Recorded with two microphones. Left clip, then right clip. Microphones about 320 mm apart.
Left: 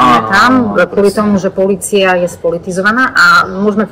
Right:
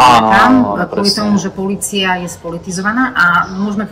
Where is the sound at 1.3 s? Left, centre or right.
Centre.